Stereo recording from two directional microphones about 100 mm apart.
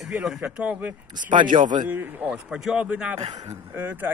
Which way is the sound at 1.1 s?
55° right (ahead or behind).